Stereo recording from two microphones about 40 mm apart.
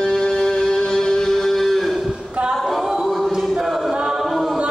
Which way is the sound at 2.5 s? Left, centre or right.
Centre.